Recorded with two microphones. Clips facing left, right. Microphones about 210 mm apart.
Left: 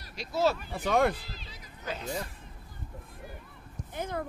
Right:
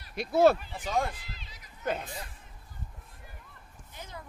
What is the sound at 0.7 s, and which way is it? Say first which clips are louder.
Speech: left 6 dB; 65° left (ahead or behind).